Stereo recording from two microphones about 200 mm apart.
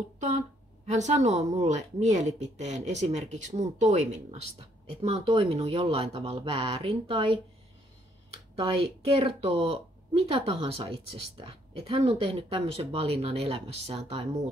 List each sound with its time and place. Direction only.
0.8 s speech: 35° right (ahead or behind)
8.5 s speech: 30° right (ahead or behind)